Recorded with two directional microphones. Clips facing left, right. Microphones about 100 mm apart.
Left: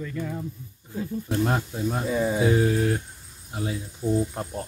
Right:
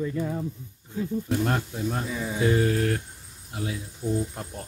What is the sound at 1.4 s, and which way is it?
Speech, 10° left (ahead or behind).